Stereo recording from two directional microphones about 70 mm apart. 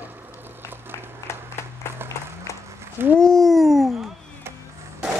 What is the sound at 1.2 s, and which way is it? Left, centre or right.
Applause, left.